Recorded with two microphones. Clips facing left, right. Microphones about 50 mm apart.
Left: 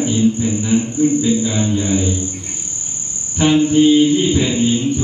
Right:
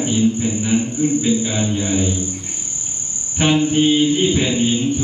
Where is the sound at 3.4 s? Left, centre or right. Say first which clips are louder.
Left 2 dB; right.